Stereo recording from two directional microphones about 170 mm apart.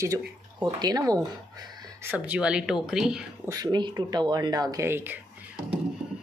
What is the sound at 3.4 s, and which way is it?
Speech, 25° right (ahead or behind).